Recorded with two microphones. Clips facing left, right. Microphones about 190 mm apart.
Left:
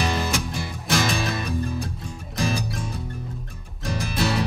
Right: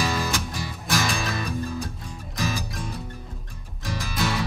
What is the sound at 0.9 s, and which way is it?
Music, 25° left (ahead or behind).